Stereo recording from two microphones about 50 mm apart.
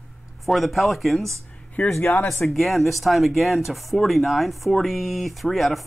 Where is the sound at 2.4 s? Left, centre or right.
Centre.